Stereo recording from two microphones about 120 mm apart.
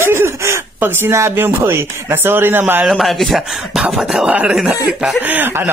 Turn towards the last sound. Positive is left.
turn(degrees=-15)  # may be behind; listen again after turning